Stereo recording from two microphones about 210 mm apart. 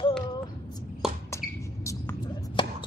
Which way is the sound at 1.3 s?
15° left (ahead or behind).